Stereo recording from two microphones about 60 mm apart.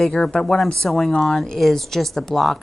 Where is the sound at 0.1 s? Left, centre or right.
Centre.